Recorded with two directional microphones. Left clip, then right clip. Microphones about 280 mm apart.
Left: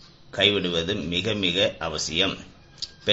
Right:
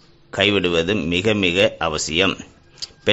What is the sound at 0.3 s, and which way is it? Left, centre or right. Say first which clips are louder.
A man's voice: right 4 dB; right.